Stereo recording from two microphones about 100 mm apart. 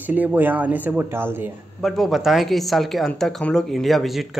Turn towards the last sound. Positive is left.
turn(degrees=0)  # may be behind; listen again after turning